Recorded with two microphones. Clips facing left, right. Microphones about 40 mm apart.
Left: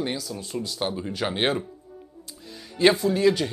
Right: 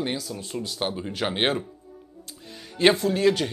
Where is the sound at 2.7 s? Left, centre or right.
Right.